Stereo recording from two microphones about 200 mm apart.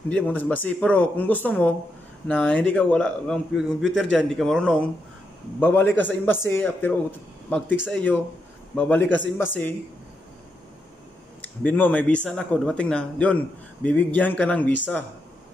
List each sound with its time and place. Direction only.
0.1 s speech: 10° left (ahead or behind)
11.4 s speech: 5° left (ahead or behind)